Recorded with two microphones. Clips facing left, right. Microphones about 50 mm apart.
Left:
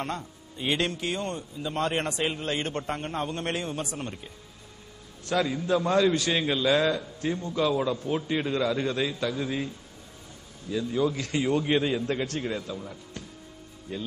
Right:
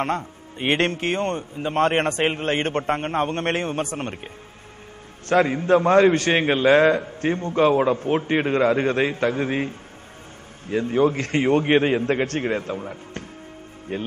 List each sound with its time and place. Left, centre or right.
0.0 s a man's voice: right
5.3 s a man's voice: right